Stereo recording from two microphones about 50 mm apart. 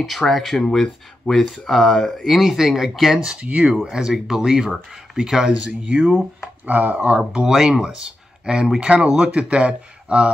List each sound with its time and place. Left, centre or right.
0.2 s speech: centre
1.7 s speech: centre
3.3 s speech: right
3.9 s speech: centre
6.6 s speech: right
7.0 s speech: centre